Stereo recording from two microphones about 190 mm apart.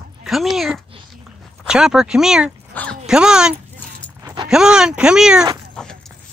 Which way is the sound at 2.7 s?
10° left (ahead or behind).